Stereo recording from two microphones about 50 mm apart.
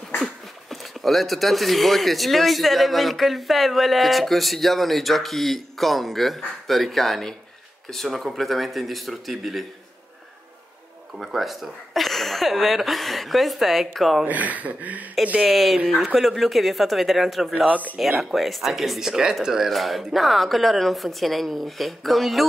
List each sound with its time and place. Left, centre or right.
0.2 s speech: centre
11.1 s speech: centre
14.2 s speech: right
15.4 s speech: centre
17.6 s speech: right
18.3 s speech: centre